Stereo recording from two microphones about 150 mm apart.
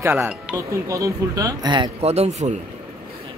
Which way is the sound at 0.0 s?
15° right (ahead or behind).